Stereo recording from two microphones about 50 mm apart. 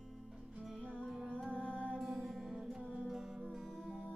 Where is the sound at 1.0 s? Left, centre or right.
Centre.